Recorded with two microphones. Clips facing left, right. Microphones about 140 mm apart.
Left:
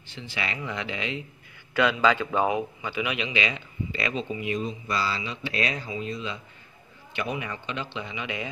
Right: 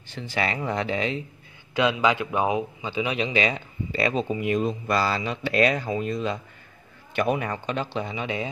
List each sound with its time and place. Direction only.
0.1 s a man's voice: 45° right (ahead or behind)
1.7 s a man's voice: 20° right (ahead or behind); by 8.5 s 35° right (ahead or behind)